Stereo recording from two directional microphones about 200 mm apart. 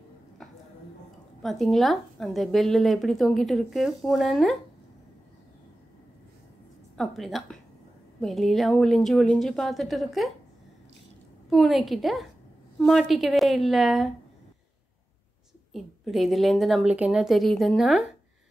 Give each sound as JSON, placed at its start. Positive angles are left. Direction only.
{"t": 1.4, "sound": "speech", "side_deg": 0}
{"t": 7.0, "sound": "speech", "side_deg": 0}
{"t": 11.5, "sound": "speech", "side_deg": 0}
{"t": 15.7, "sound": "speech", "side_deg": 0}